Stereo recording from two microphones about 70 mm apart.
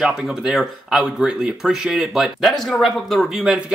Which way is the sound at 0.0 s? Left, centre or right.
Centre.